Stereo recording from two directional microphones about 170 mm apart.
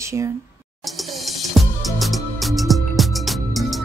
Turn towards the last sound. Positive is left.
turn(degrees=0)  # may be behind; listen again after turning